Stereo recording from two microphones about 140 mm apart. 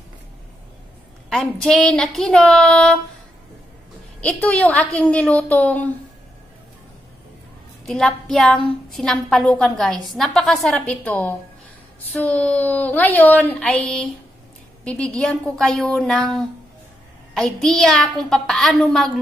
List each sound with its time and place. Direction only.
1.3 s a woman's voice: 5° left (ahead or behind)
4.2 s a woman's voice: 10° left (ahead or behind)
7.8 s a woman's voice: 5° left (ahead or behind)